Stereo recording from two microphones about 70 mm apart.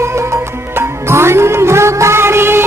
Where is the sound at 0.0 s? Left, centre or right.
Right.